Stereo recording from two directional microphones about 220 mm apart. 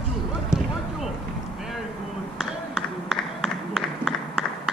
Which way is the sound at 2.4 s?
Centre (ahead or behind).